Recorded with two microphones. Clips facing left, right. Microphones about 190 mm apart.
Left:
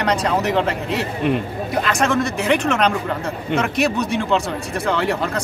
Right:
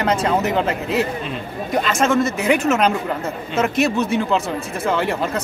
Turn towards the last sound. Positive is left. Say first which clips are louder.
# even
turn(degrees=-5)  # may be behind; listen again after turning